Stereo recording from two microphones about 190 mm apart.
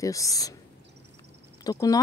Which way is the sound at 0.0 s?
15° left (ahead or behind).